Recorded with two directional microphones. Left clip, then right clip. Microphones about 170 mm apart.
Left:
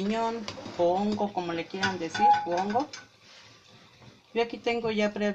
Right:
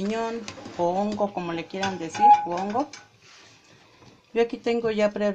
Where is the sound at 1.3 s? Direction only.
45° right (ahead or behind).